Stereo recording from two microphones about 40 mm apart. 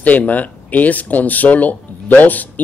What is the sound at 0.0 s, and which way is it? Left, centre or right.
Speech, left.